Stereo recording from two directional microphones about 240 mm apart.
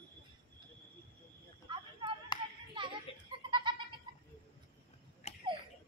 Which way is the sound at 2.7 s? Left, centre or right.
Right.